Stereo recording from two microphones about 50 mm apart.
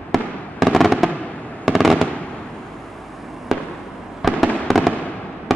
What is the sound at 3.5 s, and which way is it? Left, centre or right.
Fireworks, centre.